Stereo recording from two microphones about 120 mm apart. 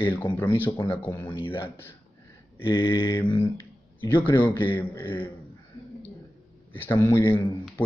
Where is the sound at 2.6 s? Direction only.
40° left (ahead or behind).